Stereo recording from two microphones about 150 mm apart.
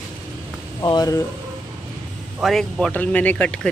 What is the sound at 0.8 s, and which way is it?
Speech, 25° left (ahead or behind).